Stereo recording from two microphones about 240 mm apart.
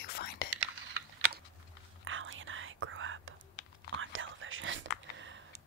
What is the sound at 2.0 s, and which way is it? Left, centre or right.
Whispering, right.